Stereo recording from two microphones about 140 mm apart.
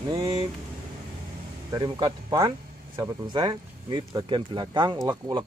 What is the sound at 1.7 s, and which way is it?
Speech, 30° right (ahead or behind).